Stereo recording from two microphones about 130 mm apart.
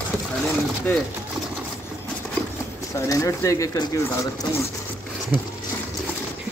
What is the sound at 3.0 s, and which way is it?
Speech, 25° left (ahead or behind).